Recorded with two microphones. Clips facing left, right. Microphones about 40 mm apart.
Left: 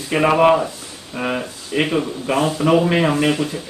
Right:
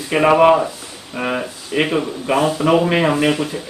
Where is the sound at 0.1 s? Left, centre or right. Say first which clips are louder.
Right 2 dB; centre.